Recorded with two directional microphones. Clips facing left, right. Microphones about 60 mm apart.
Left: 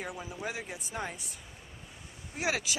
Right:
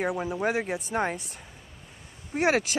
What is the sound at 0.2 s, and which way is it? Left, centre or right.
Speech, right.